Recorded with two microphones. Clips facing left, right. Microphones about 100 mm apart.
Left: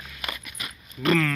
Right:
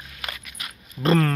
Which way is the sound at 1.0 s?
35° right (ahead or behind).